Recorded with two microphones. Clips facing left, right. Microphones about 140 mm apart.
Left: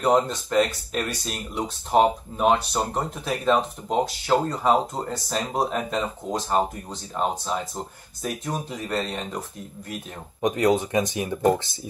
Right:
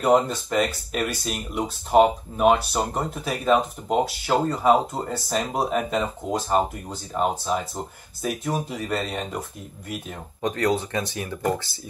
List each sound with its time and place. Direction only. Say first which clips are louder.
0.0 s speech: right 1 dB; 5° right (ahead or behind)
10.4 s speech: left 3 dB; 15° left (ahead or behind)